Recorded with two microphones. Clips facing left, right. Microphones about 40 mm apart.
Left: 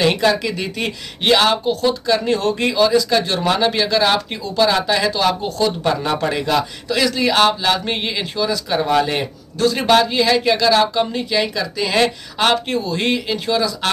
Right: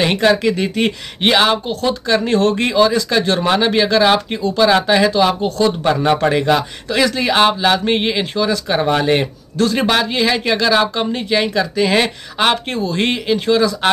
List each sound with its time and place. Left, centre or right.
0.0 s speech: right
2.2 s speech: right; by 5.5 s centre
5.6 s speech: right
9.8 s speech: centre